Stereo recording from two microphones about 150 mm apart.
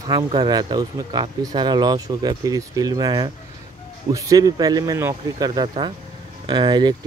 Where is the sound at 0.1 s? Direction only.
30° right (ahead or behind).